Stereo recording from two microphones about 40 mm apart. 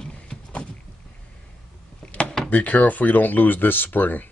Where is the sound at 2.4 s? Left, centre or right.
Left.